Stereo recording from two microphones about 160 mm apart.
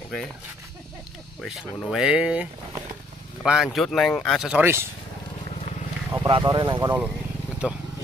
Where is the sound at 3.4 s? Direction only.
5° right (ahead or behind).